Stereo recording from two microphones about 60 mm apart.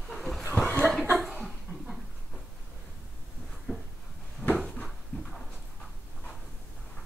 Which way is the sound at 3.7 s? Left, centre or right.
Left.